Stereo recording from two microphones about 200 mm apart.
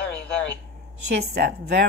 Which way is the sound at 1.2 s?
55° right (ahead or behind).